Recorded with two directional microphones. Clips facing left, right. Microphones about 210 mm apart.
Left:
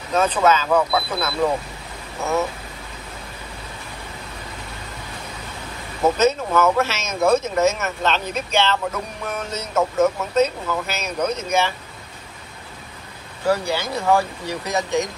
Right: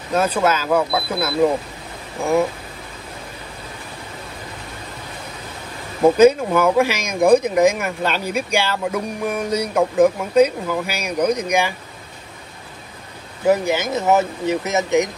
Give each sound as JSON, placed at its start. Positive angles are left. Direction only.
{"t": 0.1, "sound": "speech", "side_deg": -10}
{"t": 6.1, "sound": "speech", "side_deg": -15}
{"t": 13.5, "sound": "speech", "side_deg": -20}